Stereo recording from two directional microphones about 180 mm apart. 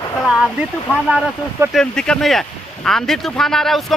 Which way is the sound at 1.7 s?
5° left (ahead or behind).